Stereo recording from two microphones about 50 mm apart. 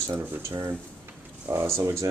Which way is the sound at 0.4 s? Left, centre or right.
Right.